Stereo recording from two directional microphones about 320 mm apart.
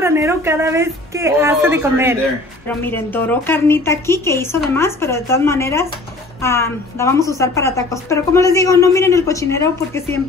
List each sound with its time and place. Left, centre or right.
0.0 s a woman's voice: centre
2.8 s a woman's voice: centre